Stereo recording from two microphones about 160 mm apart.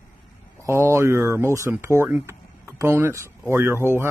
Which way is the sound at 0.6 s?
15° right (ahead or behind).